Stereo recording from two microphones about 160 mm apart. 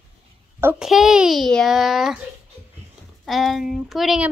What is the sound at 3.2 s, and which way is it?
A child's voice, centre (ahead or behind).